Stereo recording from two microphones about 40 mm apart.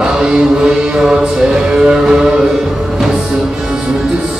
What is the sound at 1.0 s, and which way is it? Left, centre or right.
Music, centre.